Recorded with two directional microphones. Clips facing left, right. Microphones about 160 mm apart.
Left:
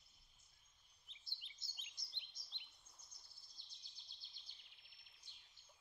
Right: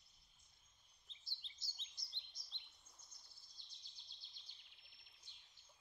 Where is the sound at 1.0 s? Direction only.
15° left (ahead or behind).